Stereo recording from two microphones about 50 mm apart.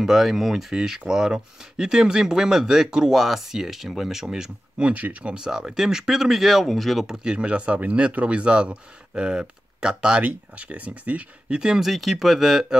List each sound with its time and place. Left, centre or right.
0.0 s speech: centre
7.1 s speech: right
11.4 s speech: centre
11.8 s speech: centre